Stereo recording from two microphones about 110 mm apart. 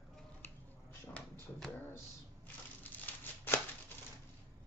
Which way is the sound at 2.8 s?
15° left (ahead or behind).